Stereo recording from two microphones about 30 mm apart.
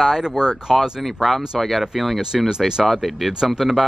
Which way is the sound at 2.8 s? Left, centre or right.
Centre.